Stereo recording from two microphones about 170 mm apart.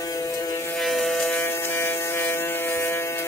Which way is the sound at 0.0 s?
20° left (ahead or behind).